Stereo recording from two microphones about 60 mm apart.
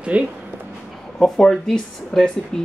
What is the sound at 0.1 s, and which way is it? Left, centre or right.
Speech, right.